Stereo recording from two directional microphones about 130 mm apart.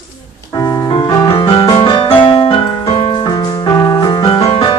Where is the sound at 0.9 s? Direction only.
30° left (ahead or behind).